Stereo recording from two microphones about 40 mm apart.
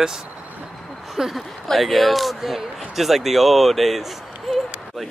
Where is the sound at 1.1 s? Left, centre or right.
Centre.